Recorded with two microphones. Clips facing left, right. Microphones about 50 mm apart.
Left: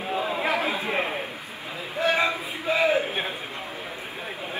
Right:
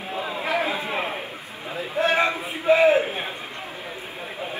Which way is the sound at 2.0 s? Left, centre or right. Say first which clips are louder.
Right 2 dB; right.